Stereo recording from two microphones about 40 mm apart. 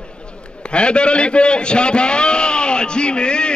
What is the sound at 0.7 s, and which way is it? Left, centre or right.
A man's voice, left.